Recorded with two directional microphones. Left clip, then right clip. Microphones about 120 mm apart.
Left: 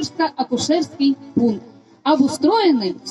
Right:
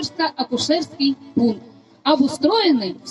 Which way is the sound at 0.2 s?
20° left (ahead or behind).